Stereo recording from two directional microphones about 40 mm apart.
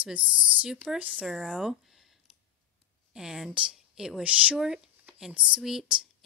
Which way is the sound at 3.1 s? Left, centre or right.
Centre.